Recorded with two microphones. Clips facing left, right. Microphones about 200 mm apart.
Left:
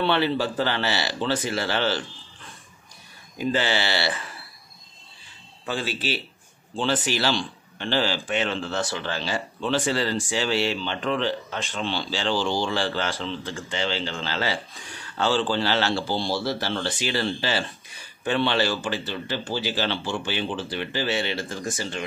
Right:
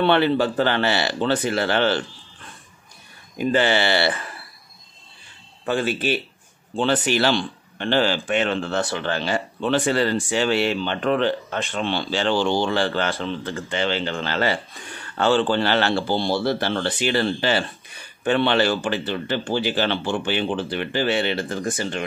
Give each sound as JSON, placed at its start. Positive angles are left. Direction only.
{"t": 0.0, "sound": "a man's voice", "side_deg": -55}
{"t": 3.3, "sound": "a man's voice", "side_deg": -55}
{"t": 5.7, "sound": "a man's voice", "side_deg": -55}